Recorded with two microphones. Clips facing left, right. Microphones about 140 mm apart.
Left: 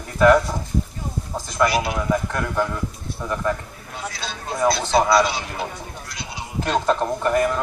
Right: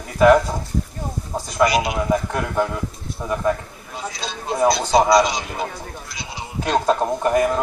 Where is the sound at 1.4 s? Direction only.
15° right (ahead or behind).